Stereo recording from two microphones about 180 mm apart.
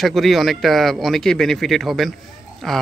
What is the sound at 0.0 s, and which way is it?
A man's voice, centre (ahead or behind).